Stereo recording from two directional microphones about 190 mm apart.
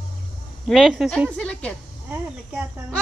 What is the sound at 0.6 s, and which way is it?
A woman's voice, centre (ahead or behind).